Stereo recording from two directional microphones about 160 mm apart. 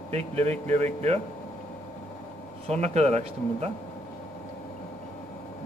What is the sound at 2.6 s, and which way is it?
Speech, 45° right (ahead or behind).